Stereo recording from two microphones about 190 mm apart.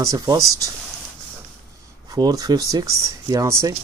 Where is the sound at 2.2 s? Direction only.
20° right (ahead or behind).